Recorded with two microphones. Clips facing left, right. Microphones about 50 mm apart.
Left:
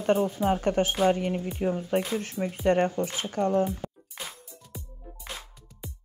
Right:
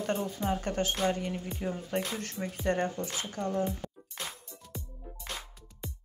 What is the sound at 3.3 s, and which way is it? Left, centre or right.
Speech, left.